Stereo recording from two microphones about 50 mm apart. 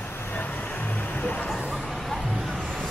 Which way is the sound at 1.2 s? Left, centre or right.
Left.